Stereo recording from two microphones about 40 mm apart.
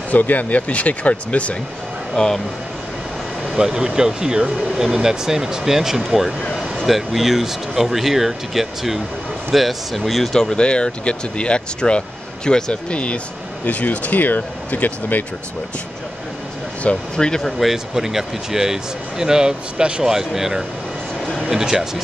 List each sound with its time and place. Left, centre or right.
0.1 s speech: left
2.1 s speech: centre
3.5 s speech: centre
10.3 s speech: centre
12.9 s speech: left
16.9 s speech: centre
17.6 s speech: centre